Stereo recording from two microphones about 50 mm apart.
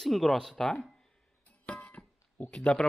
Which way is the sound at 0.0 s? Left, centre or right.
Centre.